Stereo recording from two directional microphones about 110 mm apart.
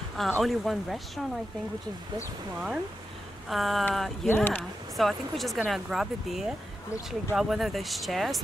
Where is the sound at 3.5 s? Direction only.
Centre (ahead or behind).